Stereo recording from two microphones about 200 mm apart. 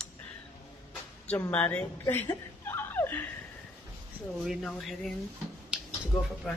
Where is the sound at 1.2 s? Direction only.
10° left (ahead or behind).